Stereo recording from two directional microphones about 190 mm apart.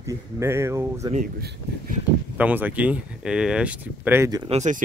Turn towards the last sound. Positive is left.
turn(degrees=-35)  # may be behind; listen again after turning